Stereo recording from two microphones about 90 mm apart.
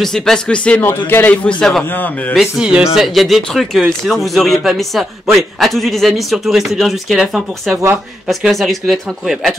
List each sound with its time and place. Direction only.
0.0 s speech: 5° left (ahead or behind)
0.8 s speech: 25° left (ahead or behind)
1.6 s speech: 5° left (ahead or behind)
1.9 s speech: 20° left (ahead or behind)
2.3 s speech: 5° right (ahead or behind)